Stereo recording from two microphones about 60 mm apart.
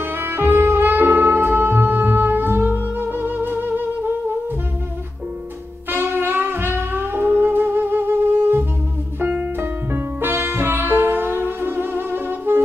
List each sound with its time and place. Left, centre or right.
0.0 s music: right
5.9 s music: right
9.2 s music: right